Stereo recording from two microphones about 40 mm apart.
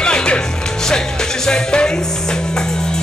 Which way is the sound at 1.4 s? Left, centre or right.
Centre.